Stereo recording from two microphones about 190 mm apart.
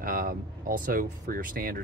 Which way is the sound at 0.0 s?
45° right (ahead or behind).